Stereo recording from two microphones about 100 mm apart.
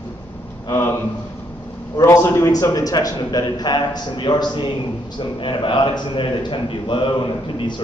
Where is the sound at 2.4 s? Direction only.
40° left (ahead or behind).